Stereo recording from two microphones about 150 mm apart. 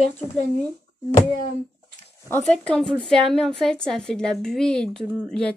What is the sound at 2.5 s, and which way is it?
A woman's voice, 5° left (ahead or behind).